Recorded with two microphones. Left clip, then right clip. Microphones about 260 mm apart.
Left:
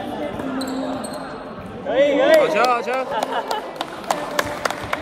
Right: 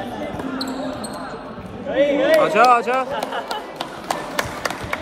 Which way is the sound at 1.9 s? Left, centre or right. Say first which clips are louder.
Left 2 dB; left.